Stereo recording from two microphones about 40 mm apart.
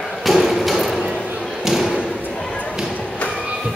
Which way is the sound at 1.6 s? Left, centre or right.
Centre.